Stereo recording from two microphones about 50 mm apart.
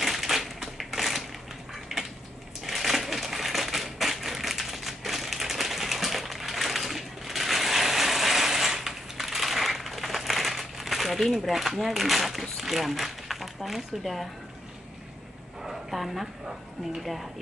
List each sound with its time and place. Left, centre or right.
0.0 s typewriter: centre
2.6 s crushing: centre
11.2 s speech: centre
15.6 s speech: centre